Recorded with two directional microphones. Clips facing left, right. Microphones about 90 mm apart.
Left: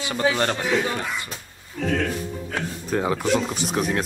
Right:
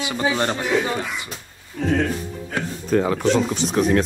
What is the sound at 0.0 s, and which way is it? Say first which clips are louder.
Speech: even; 20° right (ahead or behind).